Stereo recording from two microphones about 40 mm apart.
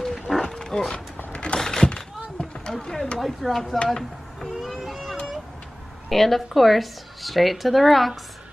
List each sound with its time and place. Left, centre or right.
0.0 s wild animals: centre
0.7 s a sound: centre
0.9 s a sound: left; by 3.1 s centre
3.2 s speech: centre
4.6 s vehicle: centre
6.0 s speech: centre